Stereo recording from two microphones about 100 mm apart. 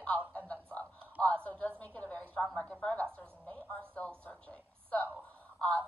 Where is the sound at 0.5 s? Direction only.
15° left (ahead or behind).